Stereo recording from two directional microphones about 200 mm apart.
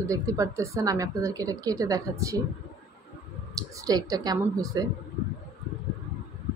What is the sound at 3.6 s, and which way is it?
Speech, 20° right (ahead or behind).